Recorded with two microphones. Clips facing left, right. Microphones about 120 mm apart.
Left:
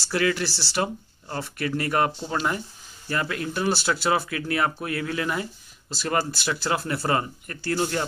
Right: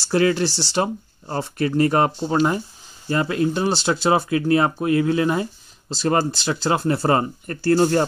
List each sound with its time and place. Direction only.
0.1 s speech: 30° right (ahead or behind)